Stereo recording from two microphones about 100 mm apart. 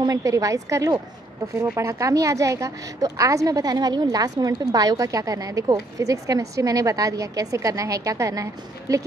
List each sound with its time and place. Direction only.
0.0 s a woman's voice: 35° right (ahead or behind)